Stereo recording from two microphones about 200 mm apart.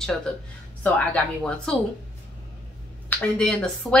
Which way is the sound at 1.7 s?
5° left (ahead or behind).